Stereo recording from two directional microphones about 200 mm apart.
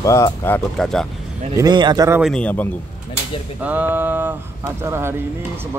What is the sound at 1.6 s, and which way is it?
Speech, 20° right (ahead or behind).